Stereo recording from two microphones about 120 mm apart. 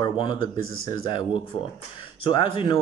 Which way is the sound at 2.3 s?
45° left (ahead or behind).